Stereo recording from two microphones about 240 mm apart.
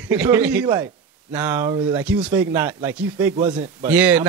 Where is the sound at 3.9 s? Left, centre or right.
Centre.